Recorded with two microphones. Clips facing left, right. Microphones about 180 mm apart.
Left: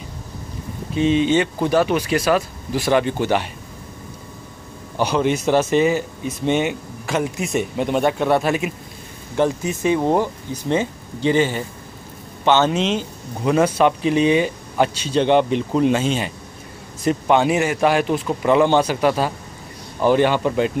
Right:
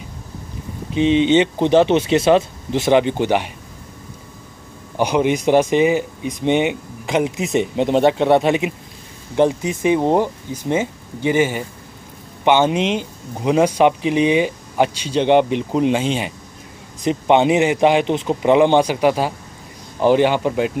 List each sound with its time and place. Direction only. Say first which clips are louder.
0.9 s speech: right 3 dB; 20° right (ahead or behind)
4.9 s speech: right 2 dB; 15° right (ahead or behind)